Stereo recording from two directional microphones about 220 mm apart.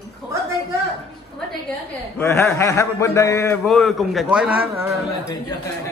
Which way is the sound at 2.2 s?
10° left (ahead or behind).